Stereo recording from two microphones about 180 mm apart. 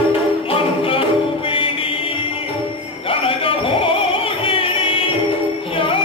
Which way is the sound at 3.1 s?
30° left (ahead or behind).